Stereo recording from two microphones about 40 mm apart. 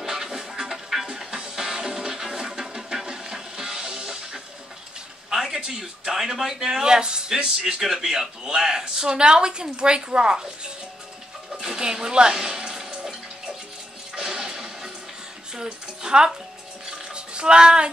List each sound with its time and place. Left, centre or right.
0.0 s music: centre
5.3 s a sound: centre
6.6 s a man's voice: centre
11.6 s a sound: centre
14.1 s music: centre
15.5 s speech: centre
16.8 s music: right